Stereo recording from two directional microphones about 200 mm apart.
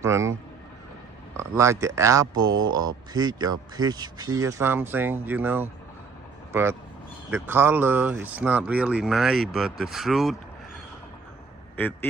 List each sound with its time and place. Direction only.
0.0 s speech: 15° right (ahead or behind)
11.7 s a man's voice: 10° left (ahead or behind)